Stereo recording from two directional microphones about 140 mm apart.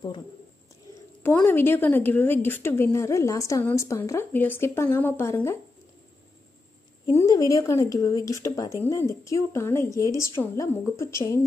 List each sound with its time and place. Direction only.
1.2 s a woman's voice: 15° left (ahead or behind)
7.1 s speech: 20° left (ahead or behind)